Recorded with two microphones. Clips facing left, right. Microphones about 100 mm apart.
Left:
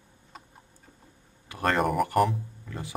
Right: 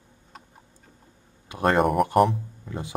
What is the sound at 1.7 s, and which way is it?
Speech, centre (ahead or behind).